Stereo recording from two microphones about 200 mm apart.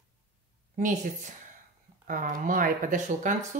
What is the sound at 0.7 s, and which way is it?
Speech, 40° right (ahead or behind).